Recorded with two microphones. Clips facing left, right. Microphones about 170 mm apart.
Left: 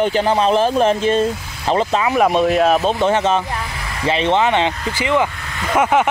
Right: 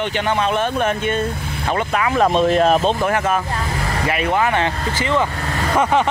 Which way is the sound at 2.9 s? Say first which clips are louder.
Left 3 dB; 25° left (ahead or behind).